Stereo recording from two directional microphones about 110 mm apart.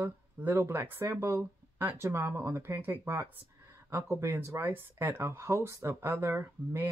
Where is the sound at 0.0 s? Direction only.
20° right (ahead or behind).